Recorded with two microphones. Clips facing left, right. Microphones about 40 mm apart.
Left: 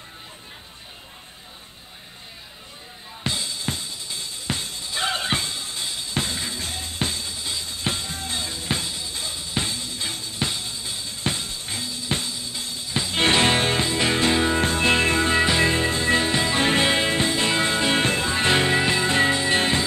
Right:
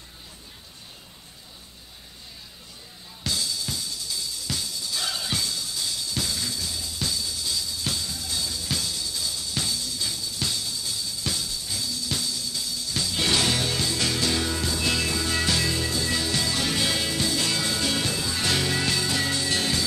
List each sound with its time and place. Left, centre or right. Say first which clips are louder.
3.3 s drum kit: left 2 dB; left